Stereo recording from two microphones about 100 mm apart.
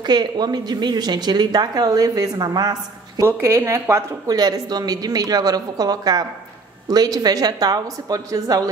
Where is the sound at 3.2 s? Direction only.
30° right (ahead or behind).